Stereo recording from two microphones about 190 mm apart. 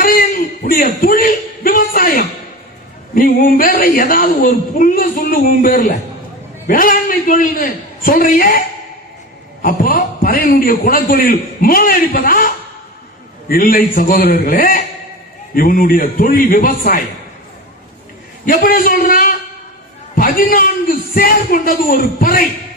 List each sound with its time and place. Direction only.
0.0 s a sound: 45° left (ahead or behind)
3.2 s a man's voice: 50° left (ahead or behind)
18.4 s a man's voice: 50° left (ahead or behind)